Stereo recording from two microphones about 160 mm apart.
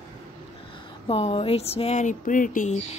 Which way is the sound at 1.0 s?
40° left (ahead or behind).